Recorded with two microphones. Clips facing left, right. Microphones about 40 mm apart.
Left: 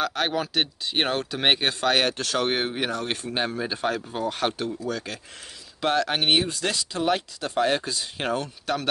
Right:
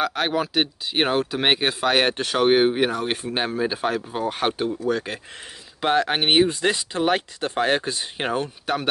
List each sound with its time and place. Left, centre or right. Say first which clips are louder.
0.0 s speech: right 3 dB; centre
2.0 s speech: right 5 dB; right